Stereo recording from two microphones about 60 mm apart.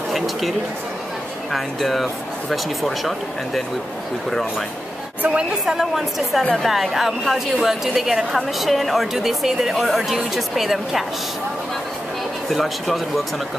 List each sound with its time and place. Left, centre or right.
0.1 s a woman's voice: centre
5.2 s a woman's voice: right
5.7 s a woman's voice: centre
12.4 s a woman's voice: centre